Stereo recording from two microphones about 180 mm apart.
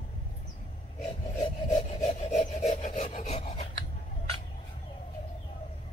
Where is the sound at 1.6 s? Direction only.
40° left (ahead or behind).